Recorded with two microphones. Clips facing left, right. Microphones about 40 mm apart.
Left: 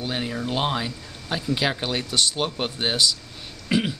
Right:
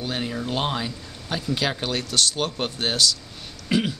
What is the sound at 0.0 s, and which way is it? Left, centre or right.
Speech, centre.